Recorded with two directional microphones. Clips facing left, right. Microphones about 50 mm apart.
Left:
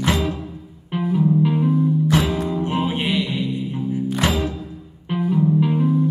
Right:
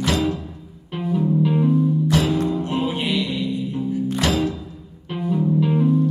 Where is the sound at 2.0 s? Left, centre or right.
Left.